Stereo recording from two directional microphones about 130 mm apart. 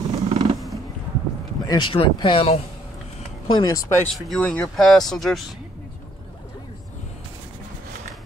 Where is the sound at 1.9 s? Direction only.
40° left (ahead or behind).